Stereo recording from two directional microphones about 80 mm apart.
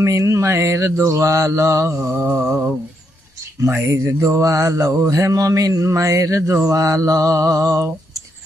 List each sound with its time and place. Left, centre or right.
0.0 s mantra: right